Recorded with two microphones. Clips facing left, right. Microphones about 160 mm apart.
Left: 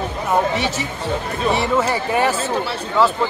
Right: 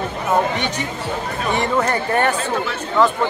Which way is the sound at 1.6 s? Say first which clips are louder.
Even; 5° left (ahead or behind).